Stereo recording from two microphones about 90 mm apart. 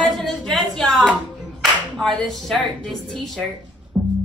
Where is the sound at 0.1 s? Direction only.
Centre (ahead or behind).